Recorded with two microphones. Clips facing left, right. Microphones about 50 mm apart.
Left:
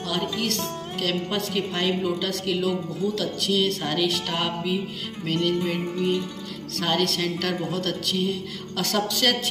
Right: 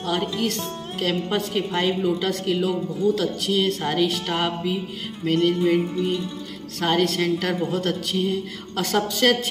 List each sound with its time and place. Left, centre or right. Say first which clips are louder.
0.0 s a woman's voice: right 3 dB; centre
6.8 s a woman's voice: right 3 dB; centre